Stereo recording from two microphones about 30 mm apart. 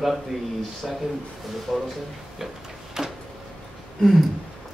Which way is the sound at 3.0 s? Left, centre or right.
Right.